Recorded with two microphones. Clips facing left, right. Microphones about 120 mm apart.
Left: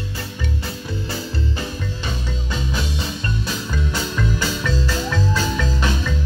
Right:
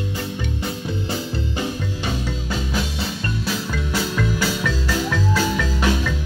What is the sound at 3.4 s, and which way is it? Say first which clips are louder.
Music: right 1 dB; 5° right (ahead or behind).